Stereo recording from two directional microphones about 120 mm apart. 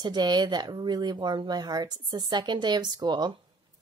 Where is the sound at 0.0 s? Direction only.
40° right (ahead or behind).